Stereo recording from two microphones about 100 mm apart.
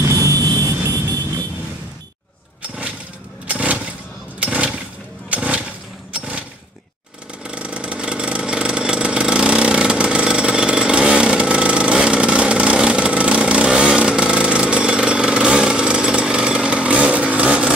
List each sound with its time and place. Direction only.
0.2 s vehicle: 35° right (ahead or behind)
3.4 s a sound: 15° right (ahead or behind)
7.4 s vehicle: 10° right (ahead or behind)